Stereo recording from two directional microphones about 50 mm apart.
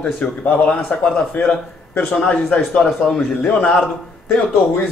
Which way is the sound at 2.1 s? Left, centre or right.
Left.